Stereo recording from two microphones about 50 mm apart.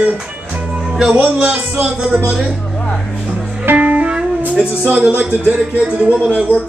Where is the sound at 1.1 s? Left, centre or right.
Right.